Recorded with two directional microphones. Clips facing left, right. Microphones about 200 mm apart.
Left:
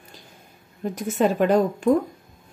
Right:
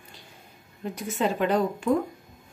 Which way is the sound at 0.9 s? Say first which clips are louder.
Left 6 dB; 45° left (ahead or behind).